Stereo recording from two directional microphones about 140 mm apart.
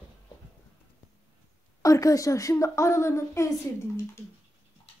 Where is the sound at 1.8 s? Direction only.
25° left (ahead or behind).